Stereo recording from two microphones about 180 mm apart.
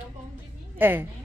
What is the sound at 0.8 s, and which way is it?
Speech, 10° right (ahead or behind).